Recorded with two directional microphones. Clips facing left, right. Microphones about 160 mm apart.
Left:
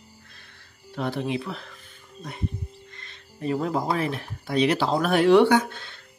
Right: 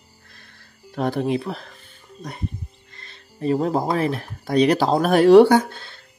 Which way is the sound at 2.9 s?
35° right (ahead or behind).